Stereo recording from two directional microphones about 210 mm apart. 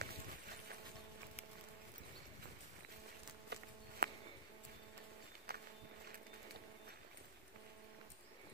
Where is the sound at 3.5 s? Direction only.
50° right (ahead or behind).